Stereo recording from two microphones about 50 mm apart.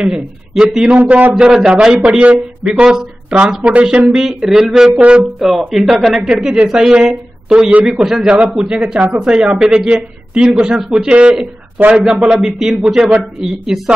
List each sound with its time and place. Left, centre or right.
0.0 s speech: centre
0.9 s a man's voice: right
1.4 s speech: centre
2.0 s a man's voice: right
4.1 s speech: centre
8.0 s a man's voice: centre